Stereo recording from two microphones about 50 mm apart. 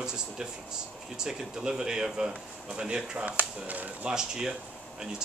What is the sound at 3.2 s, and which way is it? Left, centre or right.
Speech, right.